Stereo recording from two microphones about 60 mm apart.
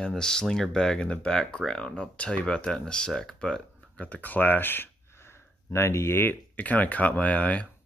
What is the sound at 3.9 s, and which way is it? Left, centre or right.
Speech, left.